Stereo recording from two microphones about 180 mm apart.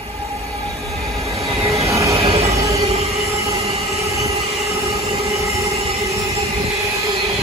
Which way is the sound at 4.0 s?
15° right (ahead or behind).